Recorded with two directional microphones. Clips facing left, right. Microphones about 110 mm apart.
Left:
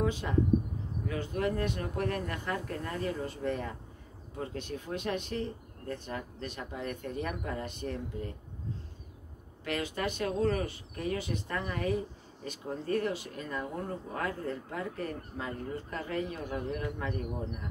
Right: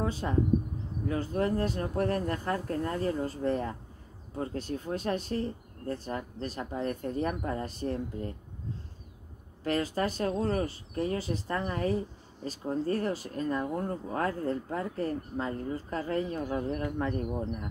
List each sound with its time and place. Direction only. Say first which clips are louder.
0.0 s speech: even; 35° right (ahead or behind)
9.7 s speech: right 4 dB; 35° right (ahead or behind)